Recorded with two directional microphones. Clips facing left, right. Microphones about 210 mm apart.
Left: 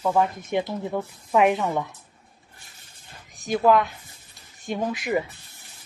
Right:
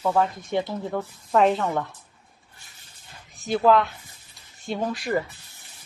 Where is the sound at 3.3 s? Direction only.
15° left (ahead or behind).